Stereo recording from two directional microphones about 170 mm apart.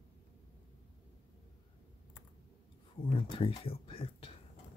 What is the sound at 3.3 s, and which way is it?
Speech, 30° left (ahead or behind).